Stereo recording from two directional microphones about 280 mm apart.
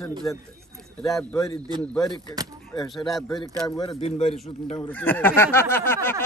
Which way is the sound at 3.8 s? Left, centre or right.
Left.